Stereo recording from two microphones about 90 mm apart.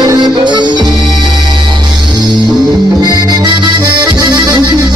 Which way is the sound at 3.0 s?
50° right (ahead or behind).